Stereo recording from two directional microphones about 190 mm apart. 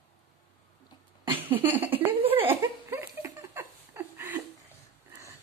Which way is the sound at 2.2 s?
30° right (ahead or behind).